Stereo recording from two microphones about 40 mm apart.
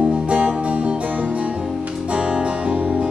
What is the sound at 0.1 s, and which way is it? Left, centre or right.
Music, right.